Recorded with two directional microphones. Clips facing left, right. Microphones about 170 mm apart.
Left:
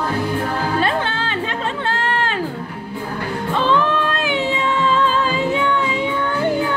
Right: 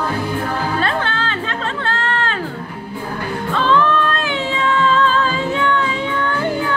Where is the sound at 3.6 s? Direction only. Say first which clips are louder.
Right 2 dB; 15° left (ahead or behind).